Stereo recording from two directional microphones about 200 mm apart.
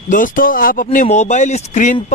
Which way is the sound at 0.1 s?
45° left (ahead or behind).